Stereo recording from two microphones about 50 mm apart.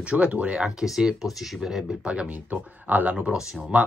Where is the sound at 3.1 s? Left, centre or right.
Centre.